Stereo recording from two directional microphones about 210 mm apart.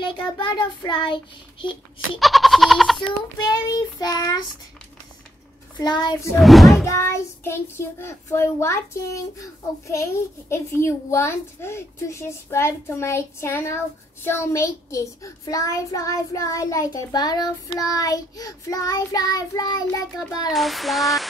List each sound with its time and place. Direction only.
0.0 s child singing: 20° left (ahead or behind)
2.1 s speech: centre (ahead or behind)
3.0 s child singing: 20° left (ahead or behind)
5.8 s child singing: 20° left (ahead or behind)
6.3 s speech: centre (ahead or behind)
6.8 s a child's voice: 10° left (ahead or behind)
20.5 s speech: centre (ahead or behind)